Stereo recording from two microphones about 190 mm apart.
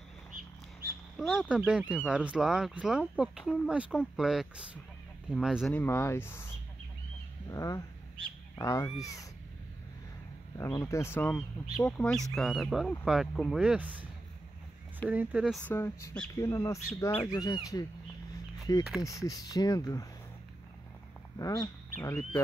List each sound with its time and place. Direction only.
1.1 s speech: centre (ahead or behind)
5.7 s speech: 10° left (ahead or behind)
10.6 s speech: 15° left (ahead or behind); by 14.0 s 10° right (ahead or behind)
15.0 s speech: 5° right (ahead or behind)
15.6 s speech: 10° left (ahead or behind)
18.9 s speech: 15° left (ahead or behind)
21.4 s speech: 20° left (ahead or behind)